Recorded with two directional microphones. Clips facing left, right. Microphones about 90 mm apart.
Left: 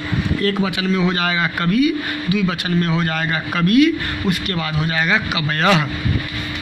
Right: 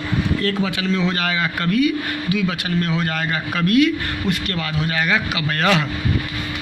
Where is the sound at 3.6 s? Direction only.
20° left (ahead or behind).